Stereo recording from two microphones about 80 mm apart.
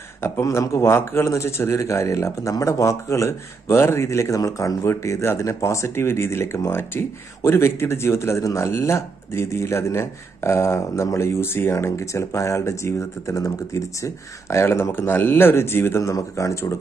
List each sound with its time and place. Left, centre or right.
0.2 s speech: left
16.0 s speech: left